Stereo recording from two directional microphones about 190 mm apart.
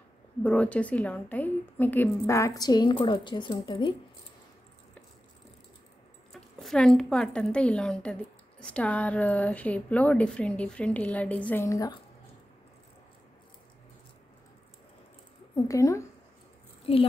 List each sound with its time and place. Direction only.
0.4 s a woman's voice: 5° left (ahead or behind); by 3.9 s 25° left (ahead or behind)
6.3 s a woman's voice: centre (ahead or behind); by 12.0 s 15° left (ahead or behind)
15.5 s a woman's voice: 15° left (ahead or behind)